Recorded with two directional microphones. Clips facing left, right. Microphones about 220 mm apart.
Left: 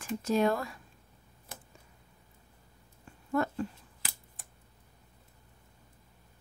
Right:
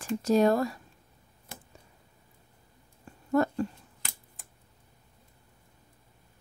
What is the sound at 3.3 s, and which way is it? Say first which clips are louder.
Dog: right 5 dB; 40° right (ahead or behind).